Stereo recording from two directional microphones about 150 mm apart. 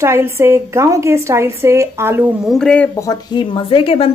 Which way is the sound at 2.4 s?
5° left (ahead or behind).